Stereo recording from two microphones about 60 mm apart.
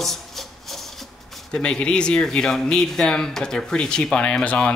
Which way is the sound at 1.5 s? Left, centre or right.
Centre.